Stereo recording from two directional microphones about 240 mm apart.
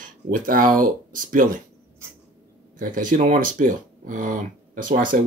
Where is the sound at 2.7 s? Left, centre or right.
Right.